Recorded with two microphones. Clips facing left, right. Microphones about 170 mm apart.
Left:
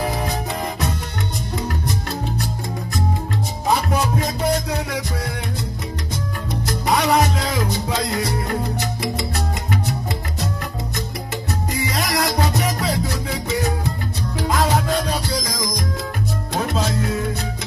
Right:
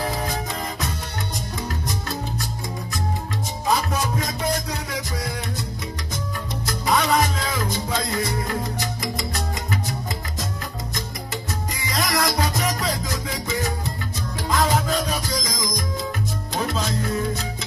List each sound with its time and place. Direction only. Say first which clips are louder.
6.7 s music: left 2 dB; 40° left (ahead or behind)
11.7 s music: left 2 dB; 35° left (ahead or behind)